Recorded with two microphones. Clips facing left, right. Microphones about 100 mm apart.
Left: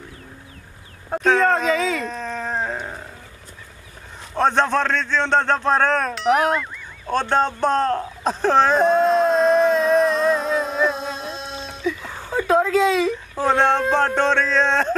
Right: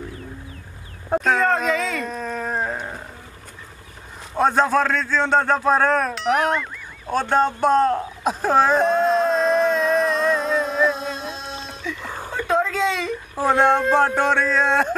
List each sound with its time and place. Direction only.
1.2 s dog: centre (ahead or behind)
4.4 s a sound: 5° right (ahead or behind)
13.3 s speech: 10° right (ahead or behind)